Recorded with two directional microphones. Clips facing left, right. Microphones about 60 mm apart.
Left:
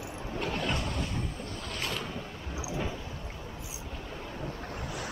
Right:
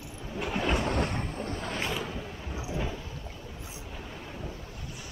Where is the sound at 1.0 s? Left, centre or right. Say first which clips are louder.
Right 4 dB; right.